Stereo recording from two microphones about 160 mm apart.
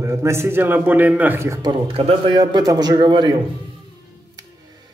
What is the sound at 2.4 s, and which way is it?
Speech, 25° right (ahead or behind).